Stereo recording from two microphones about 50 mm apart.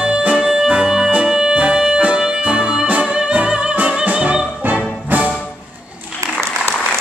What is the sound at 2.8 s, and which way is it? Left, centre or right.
Music, right.